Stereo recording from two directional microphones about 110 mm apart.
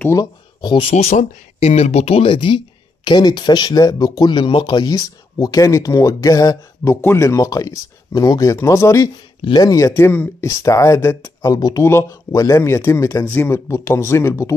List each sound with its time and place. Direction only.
0.1 s speech: 40° left (ahead or behind)
0.8 s speech: 75° left (ahead or behind); by 10.5 s 20° left (ahead or behind)
10.6 s speech: 30° left (ahead or behind)
11.4 s speech: 35° left (ahead or behind)
11.8 s speech: 25° left (ahead or behind)